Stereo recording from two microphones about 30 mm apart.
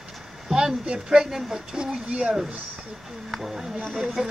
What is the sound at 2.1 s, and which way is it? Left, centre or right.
Speech, right.